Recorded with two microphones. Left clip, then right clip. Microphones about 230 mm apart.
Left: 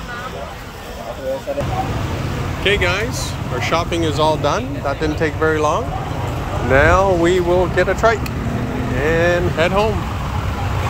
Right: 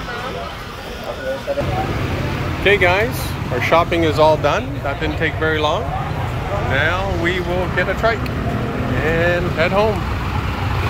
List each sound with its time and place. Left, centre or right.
2.6 s speech: centre
6.7 s speech: left